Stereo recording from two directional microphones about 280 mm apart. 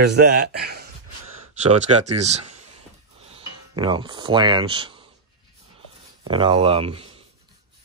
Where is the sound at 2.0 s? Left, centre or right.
Right.